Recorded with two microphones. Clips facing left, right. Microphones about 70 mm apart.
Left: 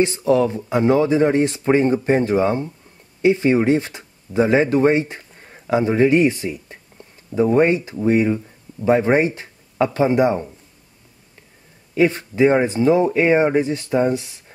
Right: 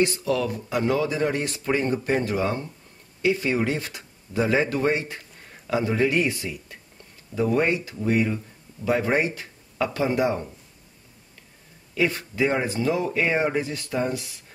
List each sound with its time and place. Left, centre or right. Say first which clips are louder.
0.0 s speech: left 6 dB; left
11.9 s speech: left 7 dB; left